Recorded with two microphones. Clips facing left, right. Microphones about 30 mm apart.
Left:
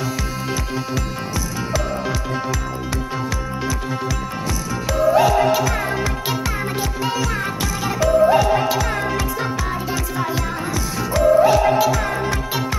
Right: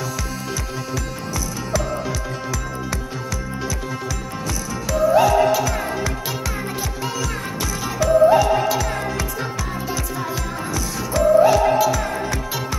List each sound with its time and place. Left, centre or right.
4.8 s music: left